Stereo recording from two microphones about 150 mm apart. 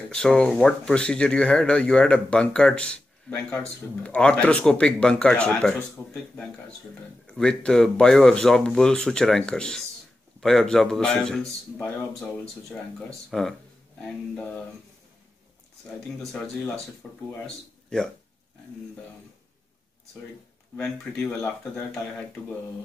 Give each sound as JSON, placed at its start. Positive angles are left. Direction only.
{"t": 0.1, "sound": "speech", "side_deg": 5}
{"t": 6.0, "sound": "speech", "side_deg": 25}
{"t": 7.2, "sound": "speech", "side_deg": 5}
{"t": 13.3, "sound": "speech", "side_deg": 0}
{"t": 17.0, "sound": "speech", "side_deg": 0}